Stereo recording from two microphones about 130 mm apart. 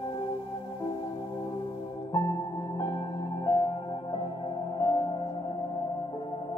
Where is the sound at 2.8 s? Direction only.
30° left (ahead or behind).